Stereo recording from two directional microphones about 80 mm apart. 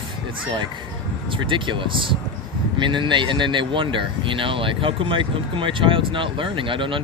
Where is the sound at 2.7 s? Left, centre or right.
Right.